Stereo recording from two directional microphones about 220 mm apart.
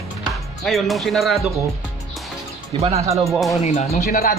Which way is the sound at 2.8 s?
30° right (ahead or behind).